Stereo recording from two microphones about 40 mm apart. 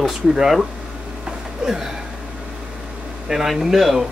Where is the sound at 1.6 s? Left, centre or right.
Right.